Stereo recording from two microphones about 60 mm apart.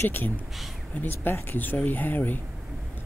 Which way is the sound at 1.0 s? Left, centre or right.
Left.